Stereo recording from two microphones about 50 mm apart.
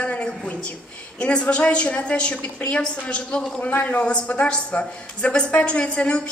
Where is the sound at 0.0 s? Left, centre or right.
Left.